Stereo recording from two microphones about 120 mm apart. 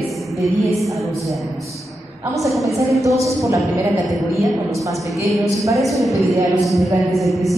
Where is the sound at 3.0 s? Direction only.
25° right (ahead or behind).